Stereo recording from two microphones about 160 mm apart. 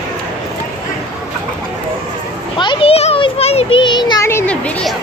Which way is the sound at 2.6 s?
30° left (ahead or behind).